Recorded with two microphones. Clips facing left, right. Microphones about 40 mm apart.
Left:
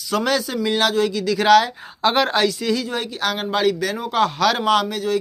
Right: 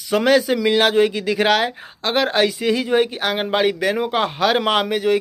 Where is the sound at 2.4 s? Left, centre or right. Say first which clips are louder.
Right 2 dB; right.